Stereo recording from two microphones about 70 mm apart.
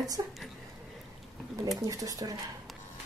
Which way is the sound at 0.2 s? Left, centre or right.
Right.